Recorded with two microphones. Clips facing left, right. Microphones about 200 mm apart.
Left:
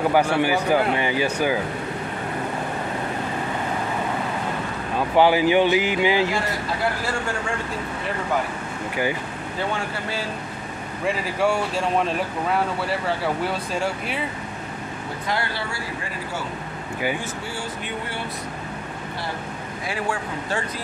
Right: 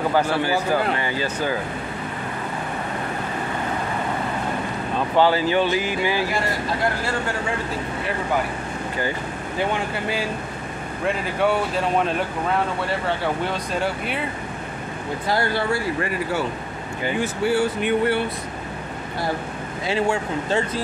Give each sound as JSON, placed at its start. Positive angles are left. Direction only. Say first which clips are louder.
{"t": 0.4, "sound": "speech", "louder": "left 2 dB", "side_deg": 15}
{"t": 4.9, "sound": "speech", "louder": "left 1 dB", "side_deg": 10}
{"t": 9.6, "sound": "speech", "louder": "right 3 dB", "side_deg": -15}
{"t": 11.1, "sound": "speech", "louder": "right 1 dB", "side_deg": 0}
{"t": 15.5, "sound": "speech", "louder": "right 8 dB", "side_deg": -55}
{"t": 17.2, "sound": "speech", "louder": "right 11 dB", "side_deg": -65}
{"t": 19.9, "sound": "speech", "louder": "right 6 dB", "side_deg": -25}